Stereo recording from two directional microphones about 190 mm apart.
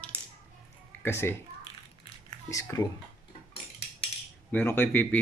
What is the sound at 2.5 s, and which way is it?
Speech, 15° left (ahead or behind).